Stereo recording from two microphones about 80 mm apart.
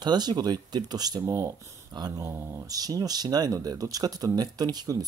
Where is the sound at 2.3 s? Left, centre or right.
Right.